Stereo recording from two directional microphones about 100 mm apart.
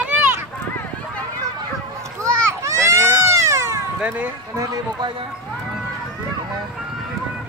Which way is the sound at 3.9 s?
15° right (ahead or behind).